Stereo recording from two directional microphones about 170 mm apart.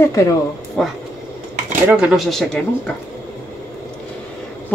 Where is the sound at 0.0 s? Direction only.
20° left (ahead or behind).